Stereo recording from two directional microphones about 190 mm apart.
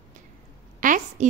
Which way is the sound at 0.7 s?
45° right (ahead or behind).